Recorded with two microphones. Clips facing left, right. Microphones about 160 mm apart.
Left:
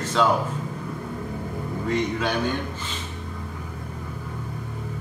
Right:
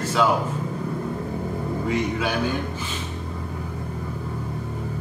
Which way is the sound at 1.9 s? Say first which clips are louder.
Left 1 dB; 10° right (ahead or behind).